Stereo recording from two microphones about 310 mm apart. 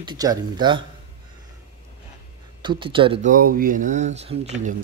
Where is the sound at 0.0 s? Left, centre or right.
Centre.